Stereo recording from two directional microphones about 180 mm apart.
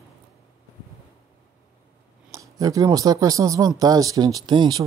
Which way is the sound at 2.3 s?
20° right (ahead or behind).